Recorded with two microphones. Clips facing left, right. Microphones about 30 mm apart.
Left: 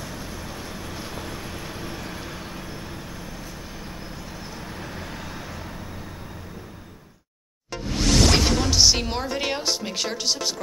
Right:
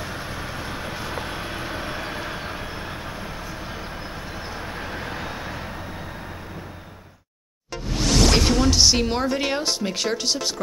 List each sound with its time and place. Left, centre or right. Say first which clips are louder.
0.0 s vehicle: right 4 dB; right
7.7 s speech: even; centre